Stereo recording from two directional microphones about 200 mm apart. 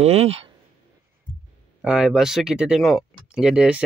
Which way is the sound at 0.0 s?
30° right (ahead or behind).